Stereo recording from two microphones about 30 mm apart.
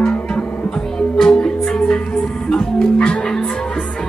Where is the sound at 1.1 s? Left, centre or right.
Centre.